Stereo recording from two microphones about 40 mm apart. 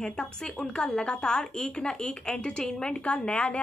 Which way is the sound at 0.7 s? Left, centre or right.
Left.